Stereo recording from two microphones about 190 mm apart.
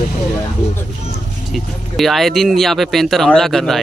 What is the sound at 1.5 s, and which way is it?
Speech, centre (ahead or behind).